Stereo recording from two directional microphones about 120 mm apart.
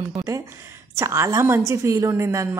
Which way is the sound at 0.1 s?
25° right (ahead or behind).